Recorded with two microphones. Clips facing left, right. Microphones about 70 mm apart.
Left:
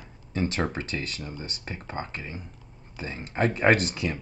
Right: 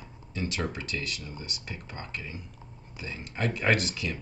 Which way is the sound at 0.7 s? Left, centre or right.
Left.